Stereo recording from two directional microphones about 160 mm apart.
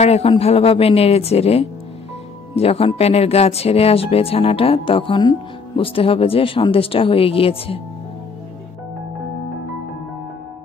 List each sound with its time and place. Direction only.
0.0 s speech: 40° left (ahead or behind)